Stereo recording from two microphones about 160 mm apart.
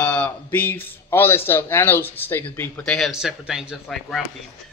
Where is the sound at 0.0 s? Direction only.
10° left (ahead or behind).